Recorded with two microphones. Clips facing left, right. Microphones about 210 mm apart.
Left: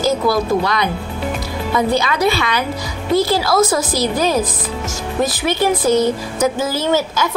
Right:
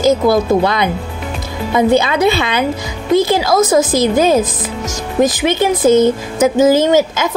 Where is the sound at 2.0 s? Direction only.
25° right (ahead or behind).